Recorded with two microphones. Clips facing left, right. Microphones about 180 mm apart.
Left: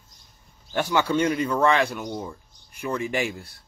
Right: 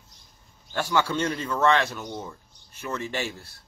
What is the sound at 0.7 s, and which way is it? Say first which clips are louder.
Speech: left 3 dB; 15° left (ahead or behind).